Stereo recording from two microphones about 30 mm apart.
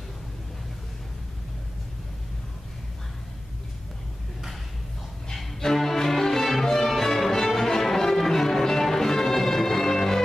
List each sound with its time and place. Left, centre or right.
5.3 s music: centre